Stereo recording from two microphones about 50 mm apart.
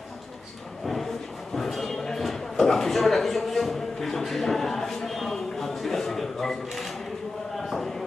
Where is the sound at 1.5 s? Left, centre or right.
Centre.